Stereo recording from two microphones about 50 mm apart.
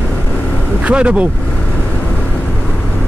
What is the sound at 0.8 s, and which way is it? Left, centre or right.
Speech, right.